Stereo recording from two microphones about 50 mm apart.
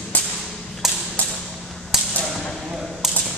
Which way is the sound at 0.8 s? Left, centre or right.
Centre.